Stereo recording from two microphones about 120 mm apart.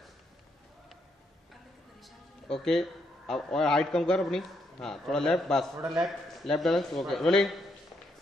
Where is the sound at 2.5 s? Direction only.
5° left (ahead or behind).